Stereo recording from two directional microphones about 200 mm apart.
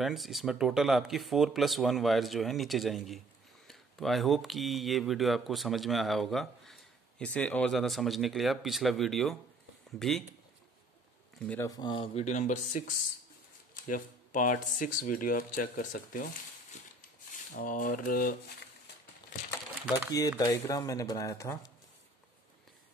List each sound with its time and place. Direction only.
0.0 s speech: centre (ahead or behind)
11.3 s speech: 5° left (ahead or behind)
11.6 s speech: 20° left (ahead or behind)
12.3 s speech: 35° left (ahead or behind)
17.6 s speech: 45° left (ahead or behind)
20.3 s speech: 15° left (ahead or behind)